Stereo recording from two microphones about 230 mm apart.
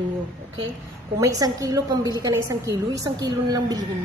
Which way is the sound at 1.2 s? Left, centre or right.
Centre.